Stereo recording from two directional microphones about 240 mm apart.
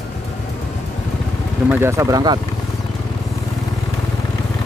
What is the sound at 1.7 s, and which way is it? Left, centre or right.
Speech, centre.